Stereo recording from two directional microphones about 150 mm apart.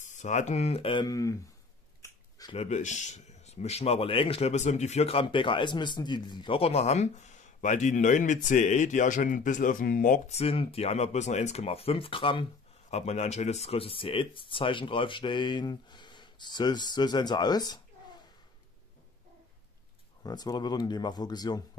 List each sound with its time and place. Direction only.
0.0 s speech: 55° left (ahead or behind)
1.0 s speech: 20° left (ahead or behind)
2.0 s a sound: 20° left (ahead or behind)
2.5 s speech: 50° left (ahead or behind); by 10.3 s 65° left (ahead or behind)
10.3 s speech: 40° left (ahead or behind)
12.9 s speech: 45° left (ahead or behind); by 17.8 s 25° left (ahead or behind)
20.2 s speech: 25° left (ahead or behind)